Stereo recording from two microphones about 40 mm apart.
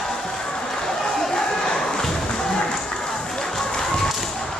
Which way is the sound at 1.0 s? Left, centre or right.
Centre.